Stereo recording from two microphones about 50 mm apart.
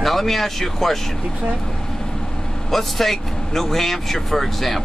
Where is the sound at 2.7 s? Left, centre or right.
Centre.